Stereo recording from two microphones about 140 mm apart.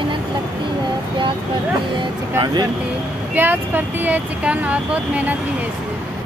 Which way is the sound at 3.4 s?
15° right (ahead or behind).